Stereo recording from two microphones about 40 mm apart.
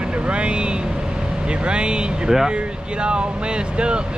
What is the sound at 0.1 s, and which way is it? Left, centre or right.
Speech, right.